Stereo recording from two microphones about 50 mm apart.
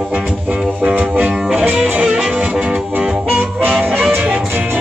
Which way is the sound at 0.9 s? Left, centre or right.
Right.